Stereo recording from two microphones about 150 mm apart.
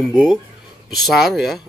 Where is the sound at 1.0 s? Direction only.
Centre (ahead or behind).